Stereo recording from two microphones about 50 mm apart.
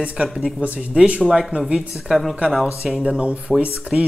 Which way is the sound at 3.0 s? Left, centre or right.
Right.